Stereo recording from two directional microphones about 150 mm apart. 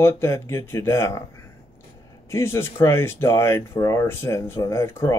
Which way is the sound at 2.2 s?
15° left (ahead or behind).